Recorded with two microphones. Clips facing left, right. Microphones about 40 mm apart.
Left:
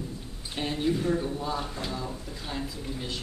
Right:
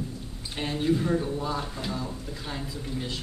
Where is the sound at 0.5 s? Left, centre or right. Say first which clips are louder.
Right 2 dB; centre.